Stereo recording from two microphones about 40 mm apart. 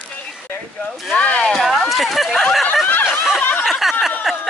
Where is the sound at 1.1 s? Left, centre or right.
Left.